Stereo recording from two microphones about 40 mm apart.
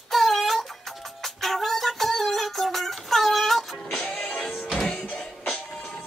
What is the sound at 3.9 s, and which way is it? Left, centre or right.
Music, left.